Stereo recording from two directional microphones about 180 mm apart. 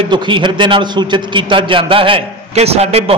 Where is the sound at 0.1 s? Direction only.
25° right (ahead or behind).